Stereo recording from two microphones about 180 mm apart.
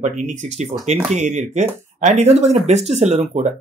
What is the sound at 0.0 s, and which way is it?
Speech, 40° right (ahead or behind).